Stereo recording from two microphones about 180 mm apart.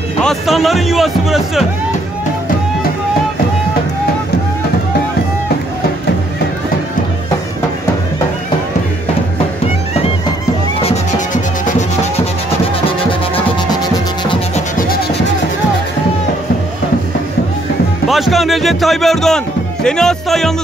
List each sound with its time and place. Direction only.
0.2 s speech: centre (ahead or behind)
10.9 s music: 45° left (ahead or behind)
14.8 s music: 55° left (ahead or behind)
18.0 s speech: centre (ahead or behind)